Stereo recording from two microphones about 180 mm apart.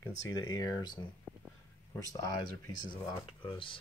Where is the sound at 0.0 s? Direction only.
20° left (ahead or behind).